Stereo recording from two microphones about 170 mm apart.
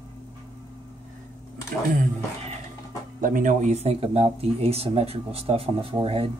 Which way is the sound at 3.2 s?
55° right (ahead or behind).